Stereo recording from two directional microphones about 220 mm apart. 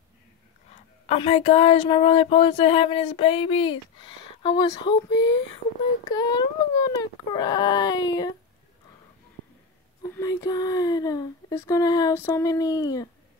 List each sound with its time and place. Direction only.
1.0 s speech: 25° left (ahead or behind)
6.0 s speech: 20° left (ahead or behind)
10.0 s speech: 15° left (ahead or behind)